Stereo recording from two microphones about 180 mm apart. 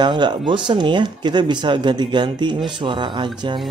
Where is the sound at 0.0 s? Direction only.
25° right (ahead or behind).